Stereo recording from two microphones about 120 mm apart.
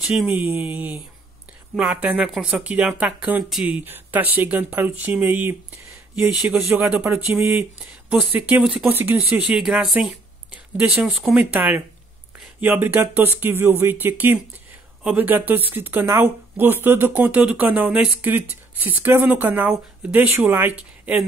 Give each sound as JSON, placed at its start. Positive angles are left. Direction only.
{"t": 0.0, "sound": "mantra", "side_deg": -5}
{"t": 0.5, "sound": "speech", "side_deg": -15}
{"t": 8.1, "sound": "speech", "side_deg": -10}